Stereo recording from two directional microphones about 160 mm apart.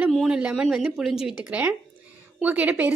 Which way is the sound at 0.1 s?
5° right (ahead or behind).